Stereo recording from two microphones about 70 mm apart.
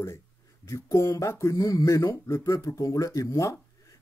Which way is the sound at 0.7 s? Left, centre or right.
Left.